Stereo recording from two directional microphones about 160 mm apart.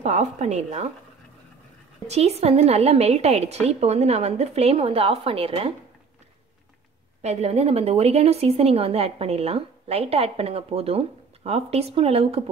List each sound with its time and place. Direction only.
0.0 s a woman's voice: 45° right (ahead or behind)
2.0 s a woman's voice: 40° right (ahead or behind)
7.2 s a woman's voice: 40° right (ahead or behind)